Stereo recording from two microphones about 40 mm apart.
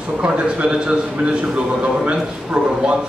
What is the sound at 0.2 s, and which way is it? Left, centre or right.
Speech, right.